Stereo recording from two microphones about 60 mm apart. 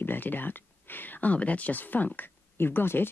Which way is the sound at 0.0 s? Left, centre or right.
Left.